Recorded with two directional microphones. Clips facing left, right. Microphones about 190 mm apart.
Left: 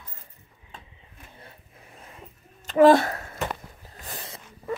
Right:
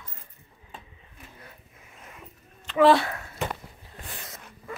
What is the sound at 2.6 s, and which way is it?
Speech, 45° left (ahead or behind).